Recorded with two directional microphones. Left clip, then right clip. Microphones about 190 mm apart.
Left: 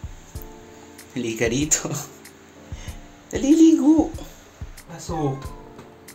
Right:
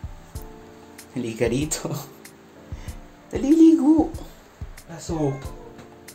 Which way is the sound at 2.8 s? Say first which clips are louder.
Left 2 dB; 5° right (ahead or behind).